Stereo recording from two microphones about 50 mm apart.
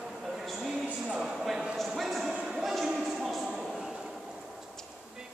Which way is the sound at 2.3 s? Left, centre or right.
Centre.